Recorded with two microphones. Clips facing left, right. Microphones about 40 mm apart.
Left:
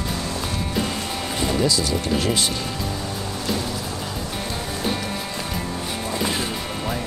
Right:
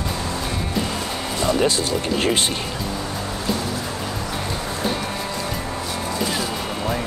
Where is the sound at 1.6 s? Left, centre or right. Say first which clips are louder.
Right 1 dB; right.